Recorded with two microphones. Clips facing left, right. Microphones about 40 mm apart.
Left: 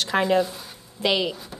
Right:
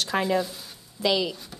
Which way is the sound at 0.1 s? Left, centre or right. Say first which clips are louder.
Left 4 dB; left.